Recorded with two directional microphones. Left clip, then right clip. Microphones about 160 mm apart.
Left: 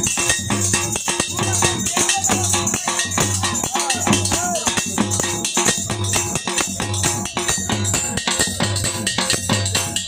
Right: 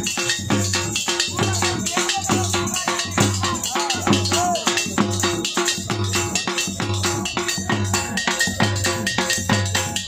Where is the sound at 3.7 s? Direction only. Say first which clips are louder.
Left 1 dB; 45° left (ahead or behind).